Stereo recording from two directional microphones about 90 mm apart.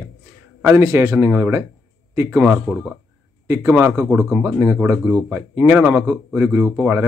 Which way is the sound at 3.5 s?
30° right (ahead or behind).